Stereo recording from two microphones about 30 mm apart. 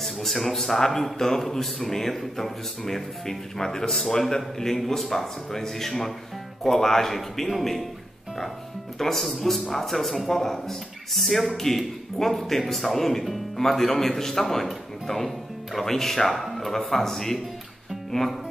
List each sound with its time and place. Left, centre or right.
0.0 s a man's voice: centre
4.7 s a man's voice: centre
8.9 s a man's voice: centre